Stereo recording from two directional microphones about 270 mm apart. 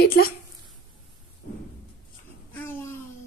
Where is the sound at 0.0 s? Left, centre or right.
Left.